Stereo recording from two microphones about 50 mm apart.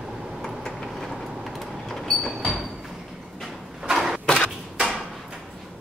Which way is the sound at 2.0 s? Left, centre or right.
Centre.